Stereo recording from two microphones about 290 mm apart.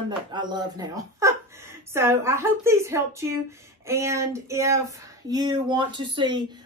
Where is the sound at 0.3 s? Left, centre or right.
Centre.